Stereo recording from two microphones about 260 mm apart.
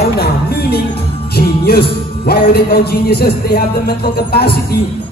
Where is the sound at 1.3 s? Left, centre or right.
Left.